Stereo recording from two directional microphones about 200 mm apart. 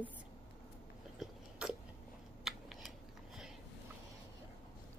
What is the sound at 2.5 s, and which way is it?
Scissors, centre (ahead or behind).